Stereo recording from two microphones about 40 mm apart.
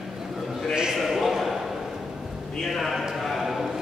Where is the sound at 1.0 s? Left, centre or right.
Centre.